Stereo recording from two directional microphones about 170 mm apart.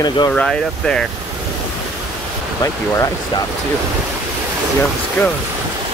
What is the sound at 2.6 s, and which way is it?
Speech, 20° left (ahead or behind).